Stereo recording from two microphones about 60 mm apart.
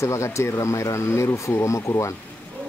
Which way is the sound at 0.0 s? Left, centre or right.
Left.